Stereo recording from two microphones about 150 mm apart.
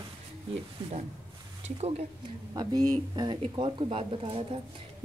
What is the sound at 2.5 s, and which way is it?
A woman's voice, 25° right (ahead or behind).